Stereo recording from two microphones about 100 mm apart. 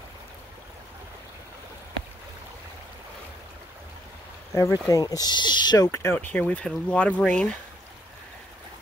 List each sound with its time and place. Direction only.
4.6 s speech: 35° left (ahead or behind)
5.9 s speech: 20° left (ahead or behind)